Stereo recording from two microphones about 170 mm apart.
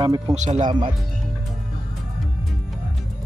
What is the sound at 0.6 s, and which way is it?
Speech, 25° right (ahead or behind).